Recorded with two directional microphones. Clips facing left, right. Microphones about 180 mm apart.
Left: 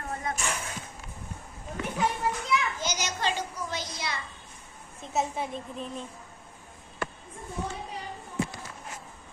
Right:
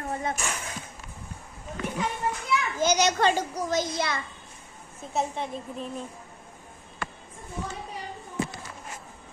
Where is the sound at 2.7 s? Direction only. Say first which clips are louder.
Right 10 dB; 60° right (ahead or behind).